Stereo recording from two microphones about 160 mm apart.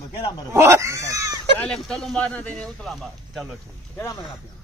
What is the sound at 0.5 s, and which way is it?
Dog, 15° right (ahead or behind).